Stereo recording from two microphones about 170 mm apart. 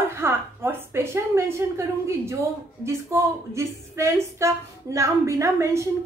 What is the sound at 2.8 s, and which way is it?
Speech, 15° right (ahead or behind).